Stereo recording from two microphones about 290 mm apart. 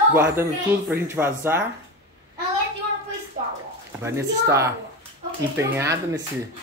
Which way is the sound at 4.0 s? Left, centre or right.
Centre.